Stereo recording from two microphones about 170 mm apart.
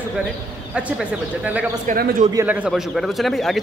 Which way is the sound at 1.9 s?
50° right (ahead or behind).